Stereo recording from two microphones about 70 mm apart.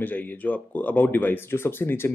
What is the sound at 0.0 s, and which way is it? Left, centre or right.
Speech, left.